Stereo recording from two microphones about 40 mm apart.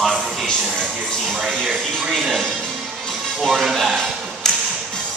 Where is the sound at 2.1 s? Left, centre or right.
Centre.